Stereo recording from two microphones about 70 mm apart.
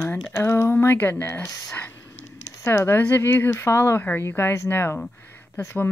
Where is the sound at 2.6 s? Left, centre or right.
Left.